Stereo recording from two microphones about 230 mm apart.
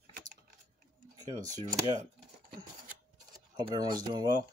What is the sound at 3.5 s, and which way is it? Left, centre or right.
Speech, centre.